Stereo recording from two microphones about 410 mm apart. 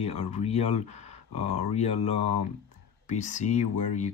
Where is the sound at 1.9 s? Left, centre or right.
Left.